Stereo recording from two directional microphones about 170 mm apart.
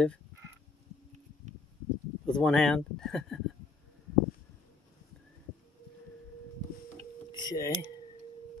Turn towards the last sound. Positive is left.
turn(degrees=20)  # may be behind; listen again after turning